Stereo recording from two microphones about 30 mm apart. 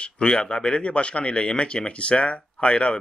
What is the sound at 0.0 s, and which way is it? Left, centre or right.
Speech, left.